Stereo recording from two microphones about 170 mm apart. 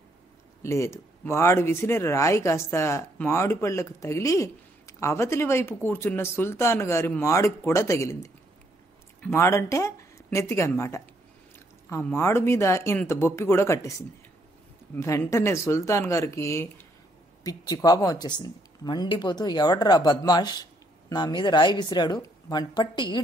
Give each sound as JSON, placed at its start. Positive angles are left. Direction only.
{"t": 0.6, "sound": "speech", "side_deg": 15}
{"t": 15.0, "sound": "a woman's voice", "side_deg": 15}